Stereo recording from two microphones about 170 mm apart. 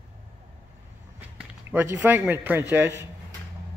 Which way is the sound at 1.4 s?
15° right (ahead or behind).